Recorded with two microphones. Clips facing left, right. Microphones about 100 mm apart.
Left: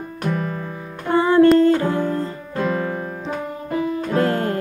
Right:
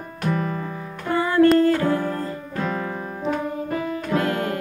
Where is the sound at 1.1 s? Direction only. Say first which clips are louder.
Left 3 dB; 25° left (ahead or behind).